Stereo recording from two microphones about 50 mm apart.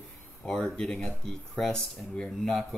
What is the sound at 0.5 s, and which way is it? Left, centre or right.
Speech, centre.